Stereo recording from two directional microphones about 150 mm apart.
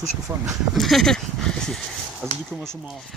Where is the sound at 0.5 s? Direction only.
Centre (ahead or behind).